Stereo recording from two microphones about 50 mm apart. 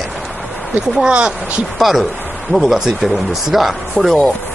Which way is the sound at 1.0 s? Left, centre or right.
Centre.